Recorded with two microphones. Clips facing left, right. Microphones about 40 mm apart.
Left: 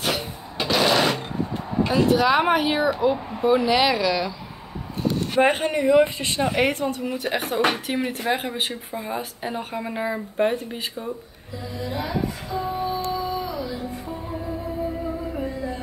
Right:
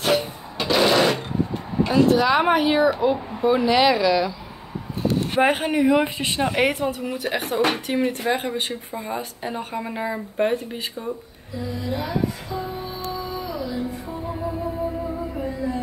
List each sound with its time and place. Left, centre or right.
0.0 s a sound: centre
1.9 s speech: centre
5.4 s a woman's voice: centre
12.6 s music: centre